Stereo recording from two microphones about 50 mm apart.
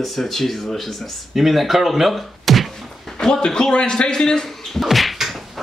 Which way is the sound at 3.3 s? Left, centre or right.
Centre.